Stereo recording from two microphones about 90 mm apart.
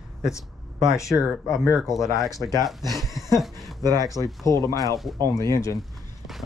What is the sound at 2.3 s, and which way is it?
Speech, 40° left (ahead or behind).